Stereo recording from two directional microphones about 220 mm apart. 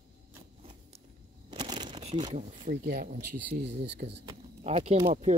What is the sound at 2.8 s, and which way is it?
Speech, 45° right (ahead or behind).